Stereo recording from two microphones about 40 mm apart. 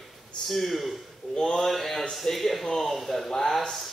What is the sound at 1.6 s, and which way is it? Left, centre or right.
Speech, centre.